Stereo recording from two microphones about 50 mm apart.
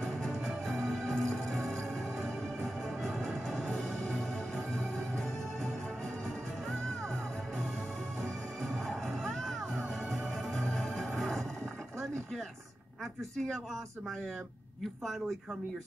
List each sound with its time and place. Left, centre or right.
0.0 s music: centre
8.2 s music: centre
10.7 s music: centre
14.8 s a man's voice: centre